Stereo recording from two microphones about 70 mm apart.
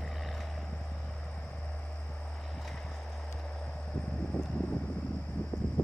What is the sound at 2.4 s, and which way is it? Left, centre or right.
Vehicle, centre.